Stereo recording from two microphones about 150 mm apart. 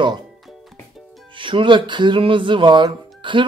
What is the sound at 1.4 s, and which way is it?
Speech, 35° right (ahead or behind).